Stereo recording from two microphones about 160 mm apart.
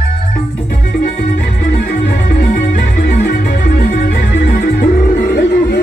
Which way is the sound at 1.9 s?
70° left (ahead or behind).